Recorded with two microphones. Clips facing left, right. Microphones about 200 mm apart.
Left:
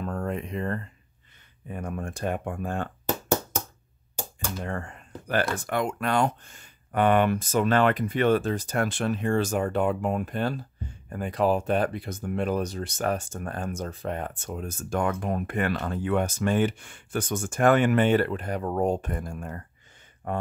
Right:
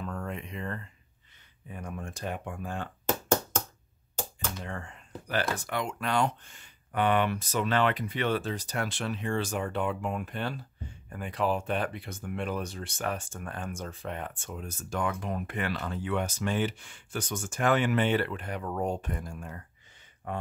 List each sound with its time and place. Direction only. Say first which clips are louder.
0.0 s a sound: left 6 dB; 45° left (ahead or behind)
1.7 s speech: left 6 dB; 50° left (ahead or behind)
4.6 s speech: left 6 dB; 55° left (ahead or behind)